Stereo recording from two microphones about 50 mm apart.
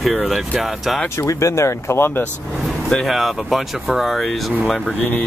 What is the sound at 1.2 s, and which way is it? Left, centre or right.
Speech, left.